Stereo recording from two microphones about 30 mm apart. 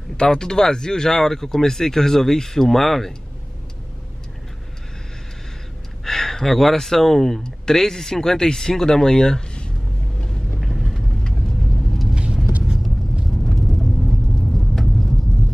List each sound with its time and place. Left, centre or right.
0.2 s speech: left; by 3.1 s centre
6.0 s speech: centre
10.6 s vehicle: centre
13.3 s vehicle: centre